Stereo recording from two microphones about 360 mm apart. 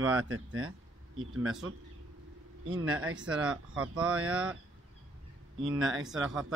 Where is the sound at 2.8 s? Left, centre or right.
Right.